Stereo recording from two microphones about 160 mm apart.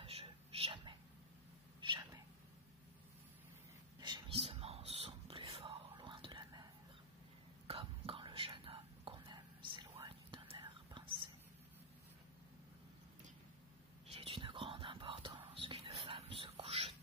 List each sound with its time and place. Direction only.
0.0 s whispering: 35° right (ahead or behind)
1.8 s a sound: 30° right (ahead or behind)
4.0 s whispering: 35° right (ahead or behind)
14.1 s whispering: 35° right (ahead or behind)